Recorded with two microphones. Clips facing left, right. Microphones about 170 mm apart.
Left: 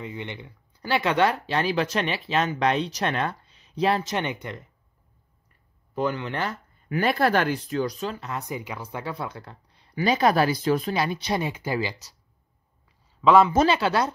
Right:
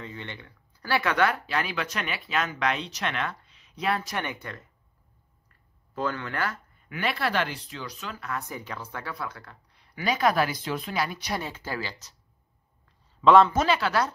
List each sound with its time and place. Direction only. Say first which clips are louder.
0.0 s speech: left 4 dB; 15° left (ahead or behind)
5.9 s speech: left 3 dB; 15° left (ahead or behind)
6.9 s speech: left 7 dB; 40° left (ahead or behind)
11.0 s speech: left 4 dB; 25° left (ahead or behind)
11.4 s speech: left 6 dB; 15° left (ahead or behind)
12.8 s a sound: even; 5° left (ahead or behind)
13.6 s speech: left 3 dB; 25° left (ahead or behind)